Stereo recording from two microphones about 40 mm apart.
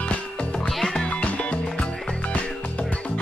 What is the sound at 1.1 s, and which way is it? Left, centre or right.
Music, left.